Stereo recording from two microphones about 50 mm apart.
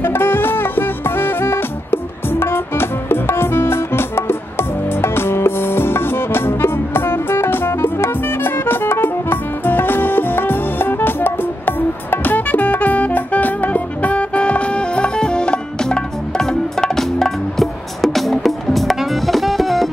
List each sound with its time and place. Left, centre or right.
0.0 s music: left; by 19.9 s centre